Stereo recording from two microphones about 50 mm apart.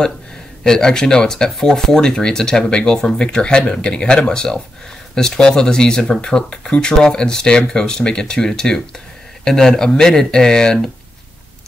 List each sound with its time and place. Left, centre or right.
0.7 s speech: centre